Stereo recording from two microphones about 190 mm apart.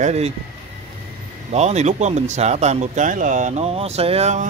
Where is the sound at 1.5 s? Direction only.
35° right (ahead or behind).